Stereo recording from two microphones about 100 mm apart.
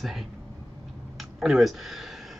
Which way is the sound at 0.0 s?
Centre (ahead or behind).